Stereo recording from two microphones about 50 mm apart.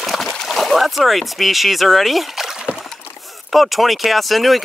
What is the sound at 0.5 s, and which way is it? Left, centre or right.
Speech, centre.